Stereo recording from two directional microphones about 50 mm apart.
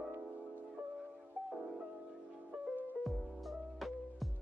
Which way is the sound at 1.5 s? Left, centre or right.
Centre.